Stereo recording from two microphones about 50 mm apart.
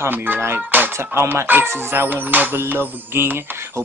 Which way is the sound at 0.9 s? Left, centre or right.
Right.